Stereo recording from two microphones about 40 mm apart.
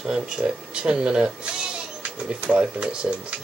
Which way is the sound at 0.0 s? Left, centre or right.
Right.